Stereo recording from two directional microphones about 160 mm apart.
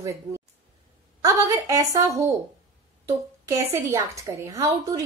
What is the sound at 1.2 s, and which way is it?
A woman's voice, 20° right (ahead or behind).